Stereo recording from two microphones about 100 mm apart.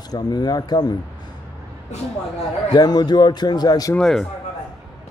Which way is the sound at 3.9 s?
10° left (ahead or behind).